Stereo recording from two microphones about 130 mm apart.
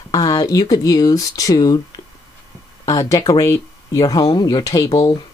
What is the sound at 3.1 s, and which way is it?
Speech, 25° left (ahead or behind).